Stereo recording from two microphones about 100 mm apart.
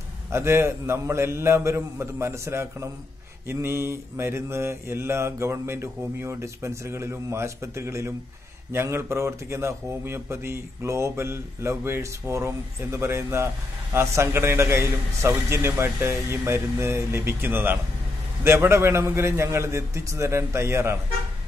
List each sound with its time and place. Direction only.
0.3 s speech: 25° right (ahead or behind)